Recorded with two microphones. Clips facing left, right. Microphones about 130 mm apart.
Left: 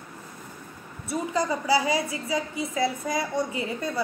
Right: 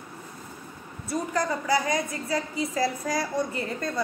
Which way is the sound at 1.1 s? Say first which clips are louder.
Left 1 dB; 10° left (ahead or behind).